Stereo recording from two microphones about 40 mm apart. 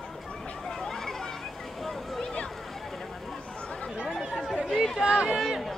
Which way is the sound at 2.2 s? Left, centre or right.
Left.